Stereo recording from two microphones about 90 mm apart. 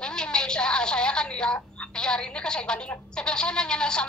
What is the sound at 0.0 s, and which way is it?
A woman's voice, 10° left (ahead or behind).